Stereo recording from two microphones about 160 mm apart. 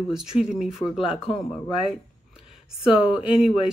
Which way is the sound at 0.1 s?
5° right (ahead or behind).